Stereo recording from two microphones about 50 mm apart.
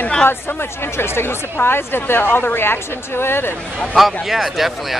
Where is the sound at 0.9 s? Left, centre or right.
Left.